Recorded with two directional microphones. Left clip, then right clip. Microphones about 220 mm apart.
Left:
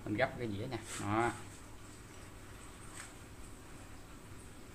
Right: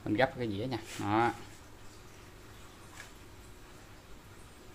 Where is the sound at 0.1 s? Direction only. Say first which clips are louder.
Right 5 dB; 45° right (ahead or behind).